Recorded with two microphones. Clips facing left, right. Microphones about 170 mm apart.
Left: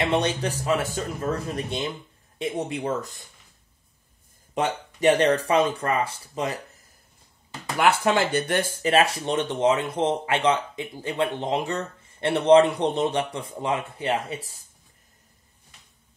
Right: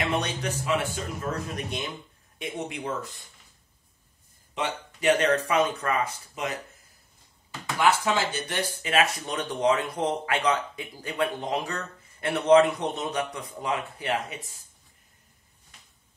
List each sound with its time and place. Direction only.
0.0 s speech: 30° left (ahead or behind)
4.6 s speech: 40° left (ahead or behind)
8.0 s speech: 60° left (ahead or behind); by 14.6 s 30° left (ahead or behind)